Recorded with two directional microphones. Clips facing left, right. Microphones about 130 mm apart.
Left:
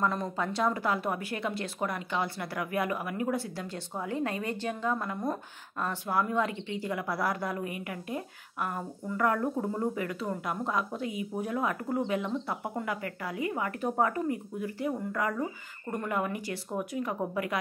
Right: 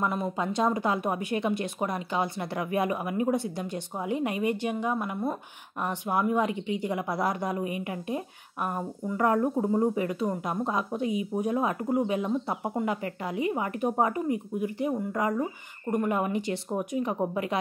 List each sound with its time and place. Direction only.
0.0 s a woman's voice: 15° right (ahead or behind)